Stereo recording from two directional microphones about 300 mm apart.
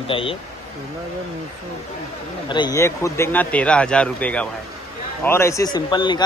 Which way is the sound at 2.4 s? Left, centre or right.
Centre.